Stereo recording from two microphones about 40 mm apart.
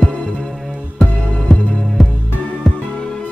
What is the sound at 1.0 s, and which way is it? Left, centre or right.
Music, left.